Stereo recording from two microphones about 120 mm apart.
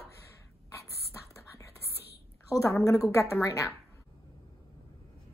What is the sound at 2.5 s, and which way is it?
A woman's voice, 25° left (ahead or behind).